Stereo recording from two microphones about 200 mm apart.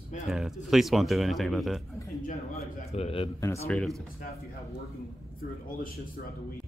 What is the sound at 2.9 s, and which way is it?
Speech, 30° left (ahead or behind).